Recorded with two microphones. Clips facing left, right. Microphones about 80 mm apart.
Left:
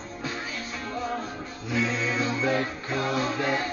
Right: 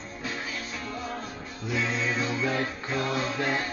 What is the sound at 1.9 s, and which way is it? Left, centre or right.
Music, left.